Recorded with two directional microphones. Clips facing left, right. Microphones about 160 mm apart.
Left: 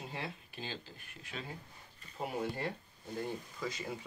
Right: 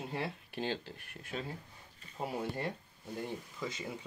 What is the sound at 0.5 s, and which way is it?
Speech, 70° right (ahead or behind).